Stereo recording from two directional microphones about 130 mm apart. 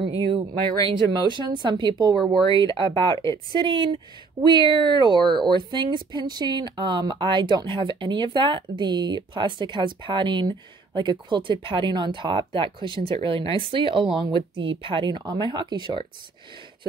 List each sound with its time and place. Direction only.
0.0 s speech: 40° right (ahead or behind)
3.1 s speech: 25° left (ahead or behind)
3.8 s speech: 35° right (ahead or behind)